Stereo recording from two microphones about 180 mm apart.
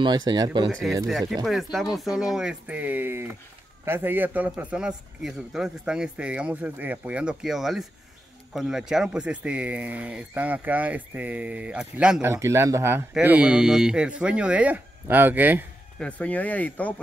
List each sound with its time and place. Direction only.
0.0 s speech: 25° right (ahead or behind)
0.9 s speech: centre (ahead or behind)
16.0 s speech: 10° left (ahead or behind)